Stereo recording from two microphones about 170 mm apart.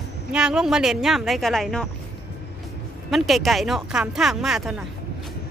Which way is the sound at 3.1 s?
Centre (ahead or behind).